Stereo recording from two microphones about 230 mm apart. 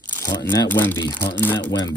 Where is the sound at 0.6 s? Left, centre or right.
Centre.